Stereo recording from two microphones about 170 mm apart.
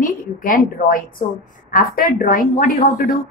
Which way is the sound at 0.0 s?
55° left (ahead or behind).